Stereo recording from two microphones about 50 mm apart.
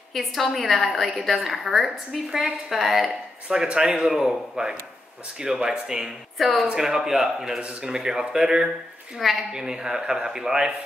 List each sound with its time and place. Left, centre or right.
0.1 s a woman's voice: centre
3.4 s speech: centre
4.0 s speech: centre
6.3 s a woman's voice: centre
6.7 s speech: centre